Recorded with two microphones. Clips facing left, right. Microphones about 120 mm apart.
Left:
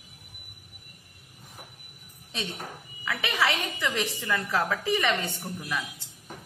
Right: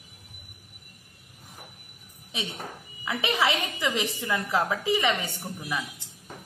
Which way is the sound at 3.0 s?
20° right (ahead or behind).